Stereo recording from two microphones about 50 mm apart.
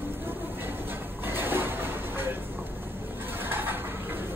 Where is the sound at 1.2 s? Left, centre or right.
Right.